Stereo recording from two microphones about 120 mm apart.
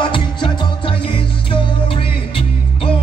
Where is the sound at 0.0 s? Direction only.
45° left (ahead or behind).